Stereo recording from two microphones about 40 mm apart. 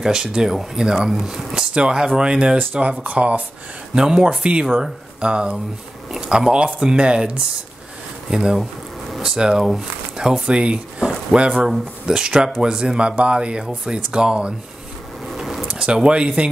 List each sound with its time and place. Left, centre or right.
0.0 s speech: centre
3.0 s speech: right
3.9 s speech: centre
15.6 s speech: right